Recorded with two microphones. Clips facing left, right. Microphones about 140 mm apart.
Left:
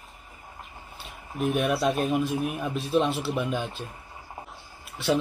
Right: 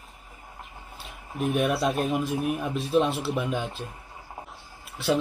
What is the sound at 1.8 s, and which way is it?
A man's voice, centre (ahead or behind).